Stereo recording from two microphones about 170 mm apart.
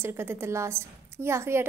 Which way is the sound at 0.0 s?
15° right (ahead or behind).